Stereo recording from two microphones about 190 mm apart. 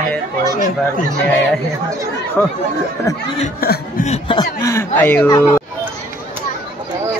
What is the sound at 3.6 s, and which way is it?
Speech, 50° left (ahead or behind).